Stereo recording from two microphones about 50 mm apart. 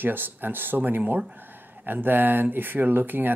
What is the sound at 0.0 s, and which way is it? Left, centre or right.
Speech, right.